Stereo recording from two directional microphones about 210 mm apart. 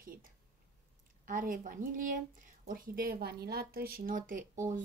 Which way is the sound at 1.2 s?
40° right (ahead or behind).